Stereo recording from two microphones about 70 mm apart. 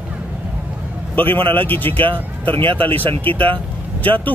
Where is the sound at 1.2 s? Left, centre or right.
Left.